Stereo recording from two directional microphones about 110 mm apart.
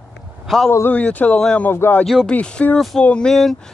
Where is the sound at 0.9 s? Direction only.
15° left (ahead or behind).